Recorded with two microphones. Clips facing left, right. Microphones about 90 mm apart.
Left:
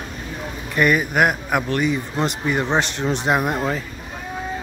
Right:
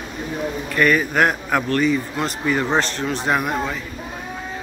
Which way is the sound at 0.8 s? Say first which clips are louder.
Even; 15° left (ahead or behind).